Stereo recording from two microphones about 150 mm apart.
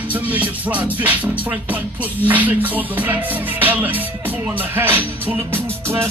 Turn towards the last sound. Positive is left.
turn(degrees=-15)  # may be behind; listen again after turning